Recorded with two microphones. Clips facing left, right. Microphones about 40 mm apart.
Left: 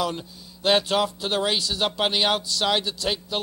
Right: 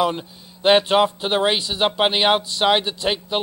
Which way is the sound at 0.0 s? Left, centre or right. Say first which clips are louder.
Right 6 dB; right.